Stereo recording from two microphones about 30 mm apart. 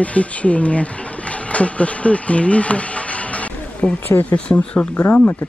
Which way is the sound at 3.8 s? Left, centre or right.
Left.